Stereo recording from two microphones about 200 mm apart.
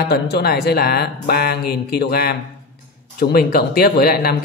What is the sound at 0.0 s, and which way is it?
Speech, 55° left (ahead or behind).